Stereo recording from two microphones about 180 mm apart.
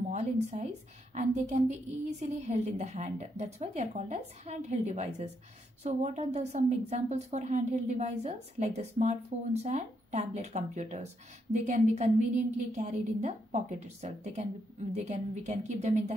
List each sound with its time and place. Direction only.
0.1 s a woman's voice: 40° right (ahead or behind)